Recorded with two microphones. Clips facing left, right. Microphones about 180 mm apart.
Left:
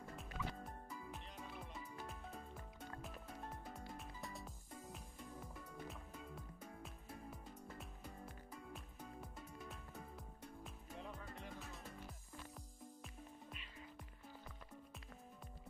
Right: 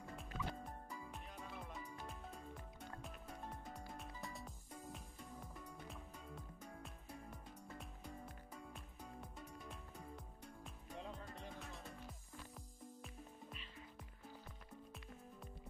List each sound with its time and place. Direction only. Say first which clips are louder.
0.1 s music: right 1 dB; centre (ahead or behind)
3.0 s music: left 1 dB; centre (ahead or behind)
5.9 s music: left 1 dB; centre (ahead or behind)
11.6 s music: right 1 dB; centre (ahead or behind)